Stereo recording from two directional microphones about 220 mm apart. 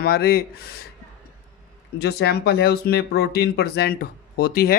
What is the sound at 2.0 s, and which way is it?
Speech, 50° left (ahead or behind).